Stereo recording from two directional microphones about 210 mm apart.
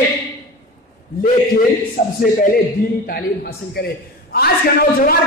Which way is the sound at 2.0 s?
45° left (ahead or behind).